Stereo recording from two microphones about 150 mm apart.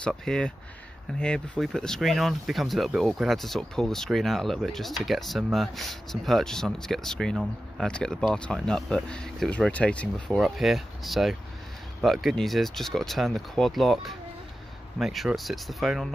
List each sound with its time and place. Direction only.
0.0 s speech: 5° left (ahead or behind)